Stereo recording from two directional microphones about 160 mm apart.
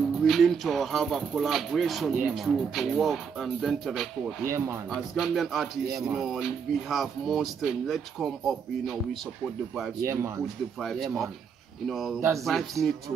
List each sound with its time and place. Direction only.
0.2 s speech: centre (ahead or behind)
4.5 s speech: 15° right (ahead or behind)
4.8 s speech: centre (ahead or behind)
10.0 s speech: 15° right (ahead or behind)
10.8 s speech: centre (ahead or behind)
12.2 s speech: 20° right (ahead or behind)
12.4 s speech: centre (ahead or behind)